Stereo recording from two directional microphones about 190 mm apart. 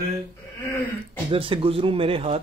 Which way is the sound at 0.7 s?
15° left (ahead or behind).